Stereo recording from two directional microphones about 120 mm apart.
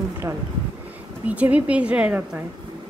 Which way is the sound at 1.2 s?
10° right (ahead or behind).